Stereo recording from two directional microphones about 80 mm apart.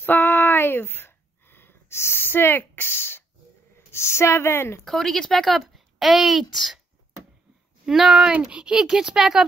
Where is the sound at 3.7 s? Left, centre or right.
Left.